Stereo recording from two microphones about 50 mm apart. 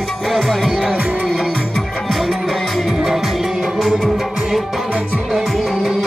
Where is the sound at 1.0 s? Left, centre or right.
Right.